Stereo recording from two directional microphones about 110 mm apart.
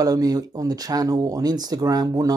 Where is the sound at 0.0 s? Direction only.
35° right (ahead or behind).